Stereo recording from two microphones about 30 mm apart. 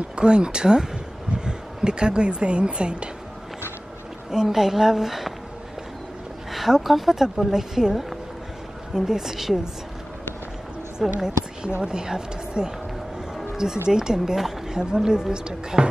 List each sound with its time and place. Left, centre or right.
0.1 s speech: right
4.3 s a woman's voice: centre
6.7 s a woman's voice: centre
11.1 s a woman's voice: centre